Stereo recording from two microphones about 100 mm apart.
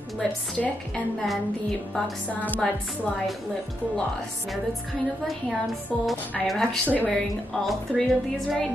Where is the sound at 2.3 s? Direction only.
15° left (ahead or behind).